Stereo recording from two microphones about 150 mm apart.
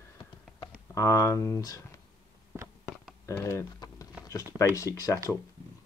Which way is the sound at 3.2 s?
20° left (ahead or behind).